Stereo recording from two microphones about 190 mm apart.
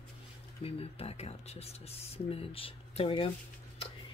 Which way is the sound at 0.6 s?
30° left (ahead or behind).